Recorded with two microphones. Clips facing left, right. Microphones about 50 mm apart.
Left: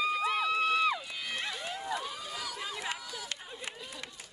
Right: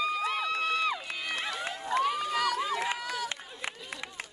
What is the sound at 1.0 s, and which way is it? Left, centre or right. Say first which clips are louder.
Run: right 3 dB; right.